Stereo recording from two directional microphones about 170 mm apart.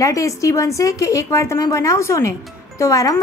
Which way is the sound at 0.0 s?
20° left (ahead or behind).